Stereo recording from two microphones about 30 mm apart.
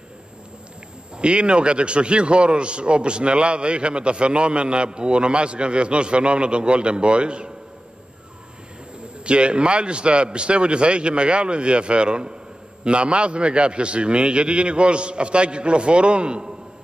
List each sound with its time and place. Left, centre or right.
1.1 s a man's voice: right
9.2 s a man's voice: right